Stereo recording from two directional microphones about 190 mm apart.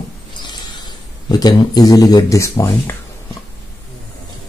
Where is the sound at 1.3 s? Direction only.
20° left (ahead or behind).